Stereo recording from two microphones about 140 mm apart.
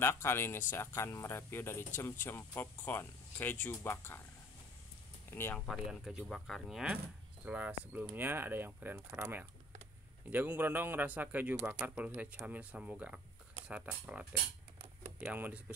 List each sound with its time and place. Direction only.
0.0 s speech: 20° left (ahead or behind)
5.3 s speech: 15° left (ahead or behind)
5.7 s speech: centre (ahead or behind)